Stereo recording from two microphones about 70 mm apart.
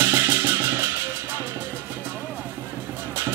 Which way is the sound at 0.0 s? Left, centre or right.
Right.